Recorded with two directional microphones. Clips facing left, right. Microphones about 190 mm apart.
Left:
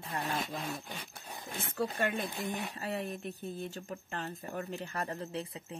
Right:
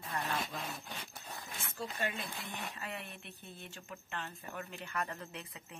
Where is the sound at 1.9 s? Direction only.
50° left (ahead or behind).